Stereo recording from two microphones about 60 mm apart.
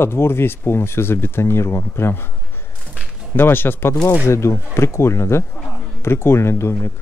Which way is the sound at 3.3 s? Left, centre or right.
Left.